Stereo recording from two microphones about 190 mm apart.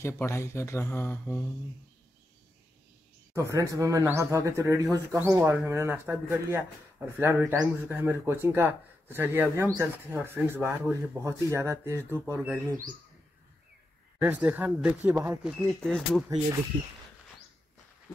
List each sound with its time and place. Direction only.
0.0 s speech: 15° left (ahead or behind)
3.3 s speech: 15° right (ahead or behind)
14.2 s speech: 10° right (ahead or behind)
15.6 s speech: 5° left (ahead or behind)